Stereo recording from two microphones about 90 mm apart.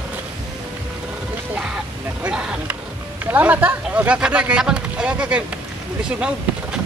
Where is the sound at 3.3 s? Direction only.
20° right (ahead or behind).